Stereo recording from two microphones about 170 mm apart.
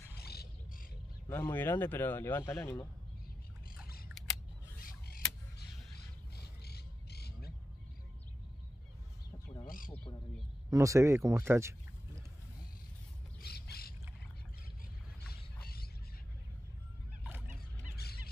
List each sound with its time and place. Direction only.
0.2 s roaring cats: 70° left (ahead or behind)
1.3 s speech: 15° left (ahead or behind)
4.7 s a sound: 60° left (ahead or behind)
9.7 s wild animals: 55° left (ahead or behind)
10.7 s speech: 20° right (ahead or behind)
13.4 s a sound: 70° left (ahead or behind)
15.2 s rodents: 65° left (ahead or behind)